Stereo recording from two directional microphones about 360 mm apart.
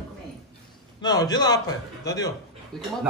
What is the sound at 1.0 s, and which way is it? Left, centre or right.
A man's voice, centre.